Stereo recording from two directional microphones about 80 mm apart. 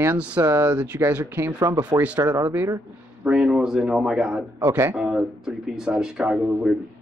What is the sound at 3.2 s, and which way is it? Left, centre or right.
Speech, centre.